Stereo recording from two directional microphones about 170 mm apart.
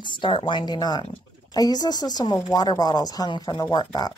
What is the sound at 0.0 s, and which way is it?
Speech, 30° left (ahead or behind).